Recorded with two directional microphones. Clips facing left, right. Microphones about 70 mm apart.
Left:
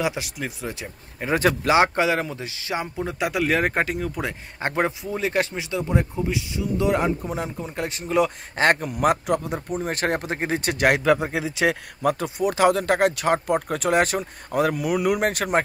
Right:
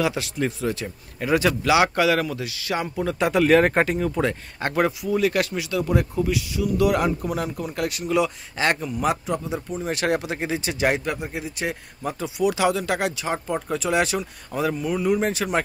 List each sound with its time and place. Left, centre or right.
0.0 s speech: centre
1.3 s speech: left; by 3.3 s centre
3.3 s speech: centre
4.2 s speech: centre; by 11.0 s left
11.5 s speech: left
12.4 s speech: left